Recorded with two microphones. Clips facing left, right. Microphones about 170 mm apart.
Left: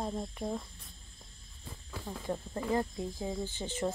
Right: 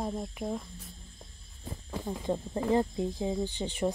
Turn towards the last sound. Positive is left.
turn(degrees=-15)  # may be behind; listen again after turning